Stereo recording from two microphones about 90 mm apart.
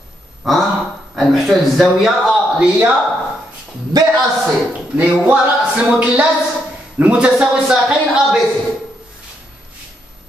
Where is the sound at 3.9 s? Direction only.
45° right (ahead or behind).